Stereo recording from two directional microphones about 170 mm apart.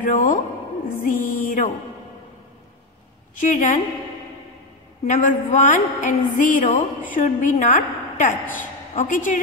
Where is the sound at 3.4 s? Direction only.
50° left (ahead or behind).